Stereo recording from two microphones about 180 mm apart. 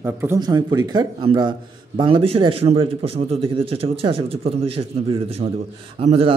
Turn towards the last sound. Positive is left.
turn(degrees=-35)  # may be behind; listen again after turning